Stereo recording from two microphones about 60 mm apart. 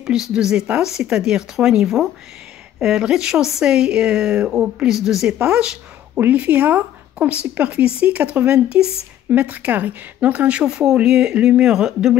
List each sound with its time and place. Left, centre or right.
0.0 s speech: centre
6.1 s speech: right